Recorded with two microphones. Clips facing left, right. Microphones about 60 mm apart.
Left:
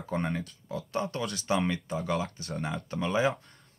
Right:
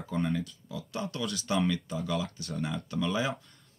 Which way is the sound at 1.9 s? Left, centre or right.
Left.